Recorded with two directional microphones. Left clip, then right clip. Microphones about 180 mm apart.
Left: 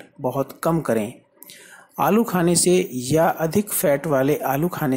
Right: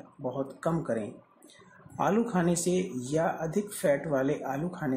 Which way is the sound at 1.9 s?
30° left (ahead or behind).